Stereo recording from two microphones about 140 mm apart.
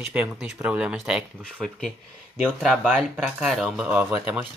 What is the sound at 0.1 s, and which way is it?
Speech, 10° right (ahead or behind).